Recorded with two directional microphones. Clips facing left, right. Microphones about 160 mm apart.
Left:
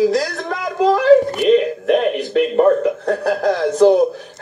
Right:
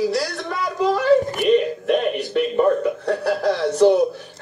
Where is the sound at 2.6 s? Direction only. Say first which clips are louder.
Left 4 dB; 50° left (ahead or behind).